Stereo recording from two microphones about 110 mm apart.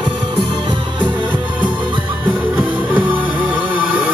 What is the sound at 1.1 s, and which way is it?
Music, 15° right (ahead or behind).